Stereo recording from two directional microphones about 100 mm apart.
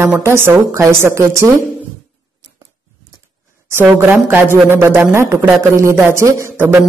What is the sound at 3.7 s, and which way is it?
Speech, 20° right (ahead or behind).